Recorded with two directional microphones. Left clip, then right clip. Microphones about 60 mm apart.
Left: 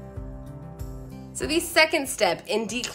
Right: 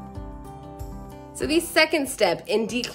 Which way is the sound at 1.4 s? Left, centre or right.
Right.